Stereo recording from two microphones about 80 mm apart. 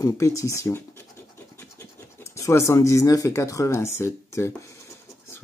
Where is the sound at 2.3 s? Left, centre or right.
Left.